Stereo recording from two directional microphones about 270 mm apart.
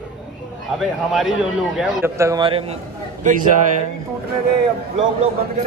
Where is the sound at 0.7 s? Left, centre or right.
Centre.